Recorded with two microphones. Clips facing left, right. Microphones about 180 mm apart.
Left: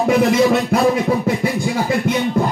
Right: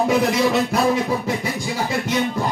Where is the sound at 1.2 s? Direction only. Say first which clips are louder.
Left 5 dB; 55° left (ahead or behind).